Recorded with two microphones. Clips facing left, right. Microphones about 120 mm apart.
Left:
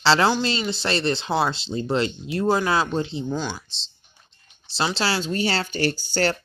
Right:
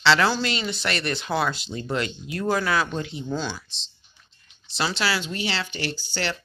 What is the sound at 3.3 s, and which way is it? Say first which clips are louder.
Speech: left 1 dB; 15° left (ahead or behind).